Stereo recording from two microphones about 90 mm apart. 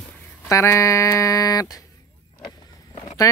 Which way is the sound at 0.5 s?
30° left (ahead or behind).